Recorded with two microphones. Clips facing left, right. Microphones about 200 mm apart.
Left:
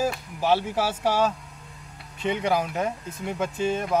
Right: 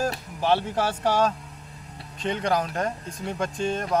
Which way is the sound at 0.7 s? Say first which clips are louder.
Even; 10° left (ahead or behind).